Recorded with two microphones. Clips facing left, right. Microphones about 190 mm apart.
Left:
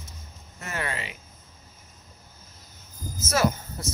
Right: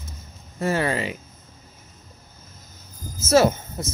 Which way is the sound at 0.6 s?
30° right (ahead or behind).